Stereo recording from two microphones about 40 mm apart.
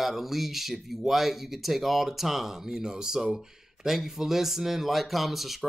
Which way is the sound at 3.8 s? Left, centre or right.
Centre.